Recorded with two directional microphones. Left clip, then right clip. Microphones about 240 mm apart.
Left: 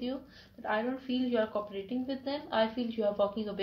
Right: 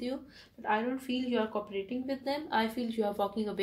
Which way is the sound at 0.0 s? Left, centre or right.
Right.